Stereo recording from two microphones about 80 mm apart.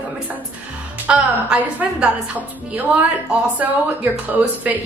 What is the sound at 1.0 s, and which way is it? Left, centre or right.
A woman's voice, centre.